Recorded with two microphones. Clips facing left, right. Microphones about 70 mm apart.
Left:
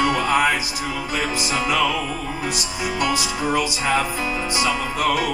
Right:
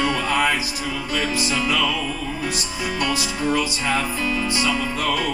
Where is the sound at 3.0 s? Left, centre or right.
Centre.